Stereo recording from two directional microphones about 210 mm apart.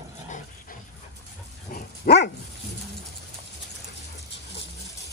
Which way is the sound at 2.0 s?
50° left (ahead or behind).